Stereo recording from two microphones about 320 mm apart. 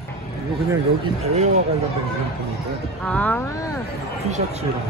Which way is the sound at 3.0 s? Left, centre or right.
Centre.